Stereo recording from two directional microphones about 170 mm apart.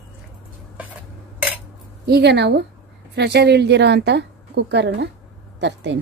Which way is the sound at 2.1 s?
75° right (ahead or behind).